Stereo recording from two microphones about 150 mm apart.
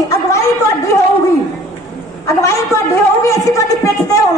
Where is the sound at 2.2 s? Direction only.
20° left (ahead or behind).